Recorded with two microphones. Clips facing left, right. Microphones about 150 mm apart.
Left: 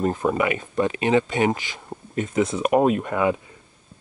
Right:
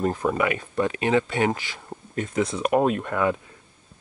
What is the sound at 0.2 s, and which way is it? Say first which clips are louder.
Speech: left 2 dB; 20° left (ahead or behind).